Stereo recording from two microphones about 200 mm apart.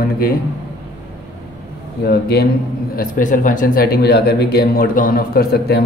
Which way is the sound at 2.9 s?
40° left (ahead or behind).